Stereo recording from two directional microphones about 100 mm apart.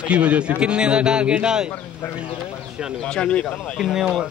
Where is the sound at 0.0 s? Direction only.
10° right (ahead or behind).